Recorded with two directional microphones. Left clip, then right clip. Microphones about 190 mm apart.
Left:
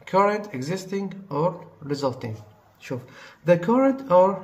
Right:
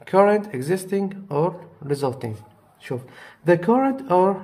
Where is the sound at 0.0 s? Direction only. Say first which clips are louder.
Right 4 dB; 45° right (ahead or behind).